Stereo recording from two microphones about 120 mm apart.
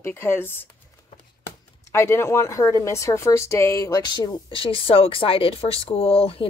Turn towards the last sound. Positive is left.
turn(degrees=55)  # may be behind; listen again after turning